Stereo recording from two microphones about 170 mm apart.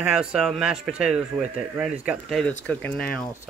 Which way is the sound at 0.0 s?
5° right (ahead or behind).